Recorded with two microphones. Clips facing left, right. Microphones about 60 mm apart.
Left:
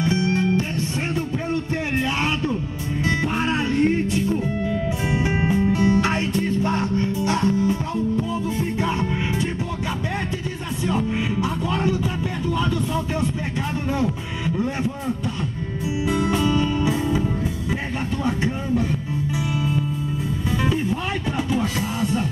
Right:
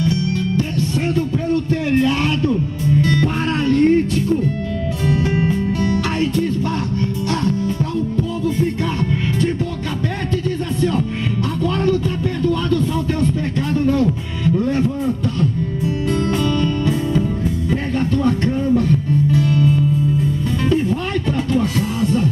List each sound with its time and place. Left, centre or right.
0.0 s music: left
10.8 s music: centre
16.1 s music: centre
18.2 s music: centre
21.5 s music: centre